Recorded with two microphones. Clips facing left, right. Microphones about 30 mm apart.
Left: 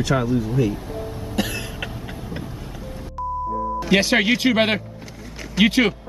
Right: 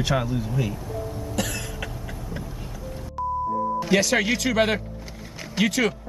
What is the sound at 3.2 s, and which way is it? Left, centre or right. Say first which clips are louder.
Beep: even; centre.